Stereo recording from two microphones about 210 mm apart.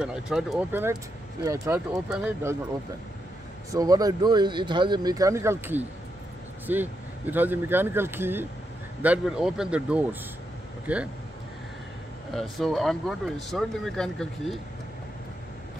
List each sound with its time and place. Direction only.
0.0 s speech: centre (ahead or behind)
3.7 s speech: 15° right (ahead or behind)
12.4 s speech: centre (ahead or behind)